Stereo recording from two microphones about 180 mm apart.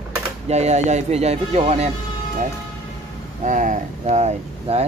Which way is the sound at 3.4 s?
45° right (ahead or behind).